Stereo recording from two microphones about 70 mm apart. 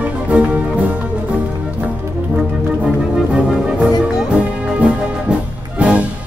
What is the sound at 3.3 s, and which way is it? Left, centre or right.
Music, centre.